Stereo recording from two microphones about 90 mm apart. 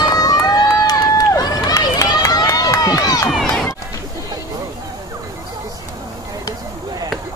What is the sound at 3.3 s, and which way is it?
Run, 5° left (ahead or behind).